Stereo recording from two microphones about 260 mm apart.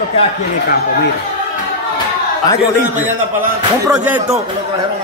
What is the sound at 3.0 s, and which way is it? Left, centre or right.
Speech, centre.